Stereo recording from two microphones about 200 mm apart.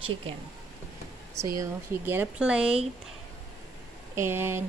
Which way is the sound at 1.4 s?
15° right (ahead or behind).